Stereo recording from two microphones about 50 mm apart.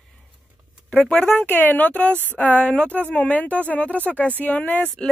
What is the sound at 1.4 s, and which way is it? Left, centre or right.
Speech, left.